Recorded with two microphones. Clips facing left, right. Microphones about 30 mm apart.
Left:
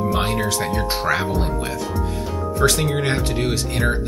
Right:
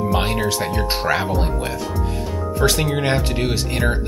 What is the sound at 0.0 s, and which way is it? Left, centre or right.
Speech, centre.